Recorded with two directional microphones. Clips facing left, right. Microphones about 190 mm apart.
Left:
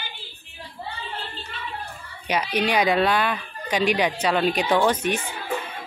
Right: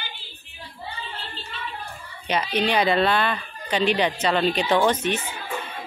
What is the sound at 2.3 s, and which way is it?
Speech, 10° left (ahead or behind).